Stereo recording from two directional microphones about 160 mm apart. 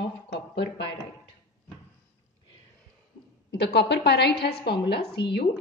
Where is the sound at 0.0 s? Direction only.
90° left.